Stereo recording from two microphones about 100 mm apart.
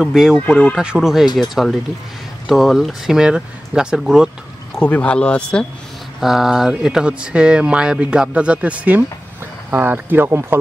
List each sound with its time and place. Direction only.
0.0 s speech: 5° right (ahead or behind)
0.4 s speech: 15° left (ahead or behind)
0.7 s speech: 5° right (ahead or behind)
4.7 s speech: 15° left (ahead or behind)
6.2 s speech: 5° right (ahead or behind); by 10.6 s 20° right (ahead or behind)